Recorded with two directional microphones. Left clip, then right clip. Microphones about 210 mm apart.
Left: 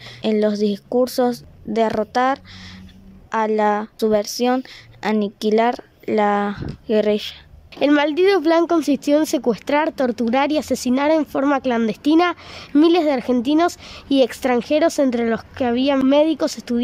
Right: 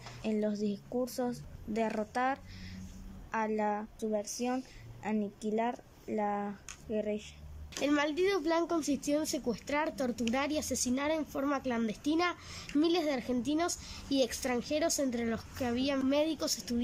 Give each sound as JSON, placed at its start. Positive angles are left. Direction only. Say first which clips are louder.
{"t": 0.2, "sound": "a woman's voice", "louder": "left 16 dB", "side_deg": 30}